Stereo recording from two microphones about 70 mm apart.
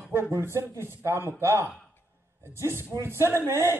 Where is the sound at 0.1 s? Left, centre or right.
Right.